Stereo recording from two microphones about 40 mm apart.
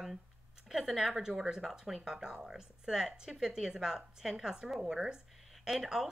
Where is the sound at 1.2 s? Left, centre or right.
Centre.